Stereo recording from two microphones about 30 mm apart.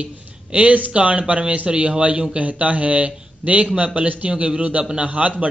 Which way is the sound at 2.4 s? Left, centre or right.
Right.